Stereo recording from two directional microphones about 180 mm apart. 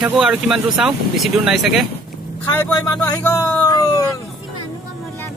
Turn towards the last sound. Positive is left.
turn(degrees=20)  # may be behind; listen again after turning